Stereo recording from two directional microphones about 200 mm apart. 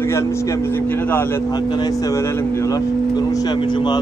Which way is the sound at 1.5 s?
20° left (ahead or behind).